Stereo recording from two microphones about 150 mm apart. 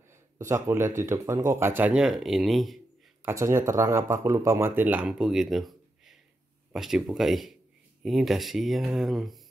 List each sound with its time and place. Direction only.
0.4 s speech: 20° right (ahead or behind)
1.8 s speech: 5° right (ahead or behind)
3.3 s speech: 20° right (ahead or behind); by 9.4 s centre (ahead or behind)